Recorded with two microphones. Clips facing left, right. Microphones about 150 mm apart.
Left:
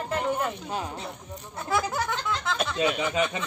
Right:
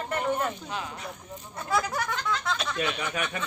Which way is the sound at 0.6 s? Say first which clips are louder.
Left 3 dB; 30° left (ahead or behind).